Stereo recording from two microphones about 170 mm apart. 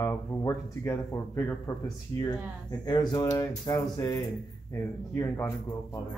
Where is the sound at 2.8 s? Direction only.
25° left (ahead or behind).